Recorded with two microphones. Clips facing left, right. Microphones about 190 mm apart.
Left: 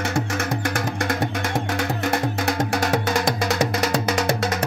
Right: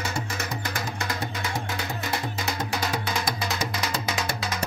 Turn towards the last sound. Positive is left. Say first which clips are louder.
# left 7 dB
turn(degrees=80)